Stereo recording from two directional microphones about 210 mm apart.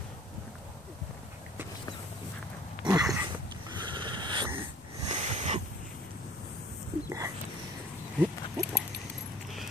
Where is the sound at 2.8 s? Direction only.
5° right (ahead or behind).